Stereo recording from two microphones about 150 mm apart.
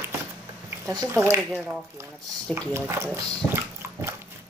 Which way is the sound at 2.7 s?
20° right (ahead or behind).